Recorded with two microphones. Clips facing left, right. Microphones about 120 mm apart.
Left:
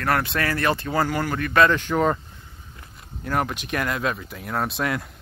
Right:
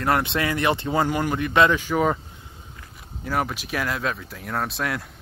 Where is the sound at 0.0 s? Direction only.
20° right (ahead or behind).